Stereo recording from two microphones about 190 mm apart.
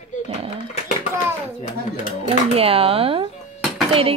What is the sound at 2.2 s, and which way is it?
Speech, 30° right (ahead or behind).